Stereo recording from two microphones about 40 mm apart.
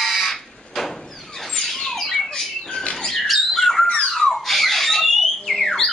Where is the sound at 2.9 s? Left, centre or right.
Centre.